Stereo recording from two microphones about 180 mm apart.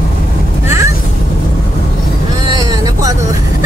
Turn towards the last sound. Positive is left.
turn(degrees=-20)  # may be behind; listen again after turning